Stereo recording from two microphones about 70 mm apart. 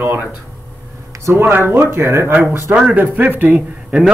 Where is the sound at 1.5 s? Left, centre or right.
Right.